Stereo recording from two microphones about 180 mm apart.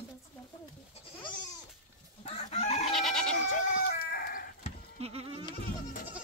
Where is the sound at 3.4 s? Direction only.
45° left (ahead or behind).